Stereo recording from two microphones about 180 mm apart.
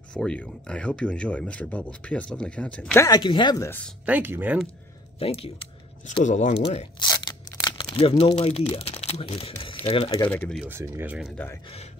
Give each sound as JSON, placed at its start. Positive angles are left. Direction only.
{"t": 0.1, "sound": "speech", "side_deg": 5}
{"t": 3.2, "sound": "speech", "side_deg": 25}
{"t": 4.0, "sound": "speech", "side_deg": -10}
{"t": 5.2, "sound": "speech", "side_deg": 35}
{"t": 7.0, "sound": "speech", "side_deg": 25}
{"t": 10.3, "sound": "speech", "side_deg": 5}
{"t": 10.6, "sound": "speech", "side_deg": -10}
{"t": 11.3, "sound": "speech", "side_deg": 10}
{"t": 11.6, "sound": "speech", "side_deg": 35}